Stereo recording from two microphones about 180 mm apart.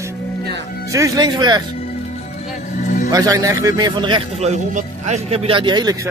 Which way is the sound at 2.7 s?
45° left (ahead or behind).